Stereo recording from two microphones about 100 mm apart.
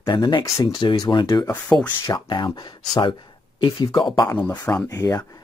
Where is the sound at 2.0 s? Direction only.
40° left (ahead or behind).